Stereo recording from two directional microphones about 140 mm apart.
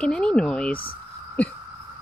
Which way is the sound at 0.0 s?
5° left (ahead or behind).